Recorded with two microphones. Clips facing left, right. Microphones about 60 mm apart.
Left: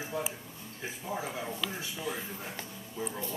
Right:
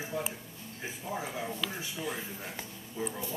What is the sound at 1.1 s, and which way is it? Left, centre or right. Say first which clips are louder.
Speech: even; centre.